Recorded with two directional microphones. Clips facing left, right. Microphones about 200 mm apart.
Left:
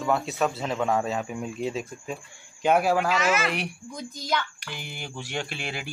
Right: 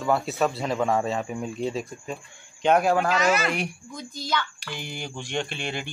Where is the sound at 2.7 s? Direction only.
5° left (ahead or behind).